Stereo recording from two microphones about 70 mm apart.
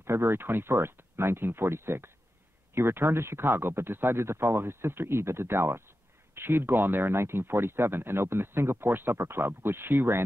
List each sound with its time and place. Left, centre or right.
0.0 s speech: right